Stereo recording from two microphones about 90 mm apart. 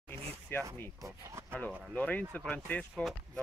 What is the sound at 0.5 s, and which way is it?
Speech, 25° left (ahead or behind).